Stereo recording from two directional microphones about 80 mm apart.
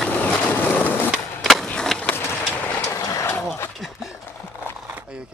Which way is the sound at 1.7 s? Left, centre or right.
Centre.